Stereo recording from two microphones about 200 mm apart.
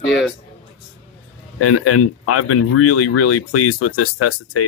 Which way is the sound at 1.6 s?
90° left.